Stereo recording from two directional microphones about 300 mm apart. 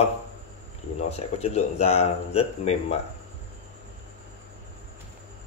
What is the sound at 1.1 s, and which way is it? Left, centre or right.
Speech, left.